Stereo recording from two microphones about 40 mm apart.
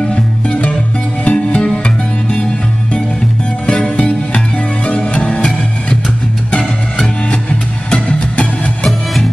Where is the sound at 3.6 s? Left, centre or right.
Left.